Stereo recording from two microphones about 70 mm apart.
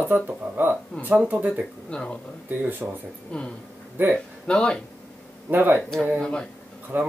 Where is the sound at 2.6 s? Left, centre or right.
Right.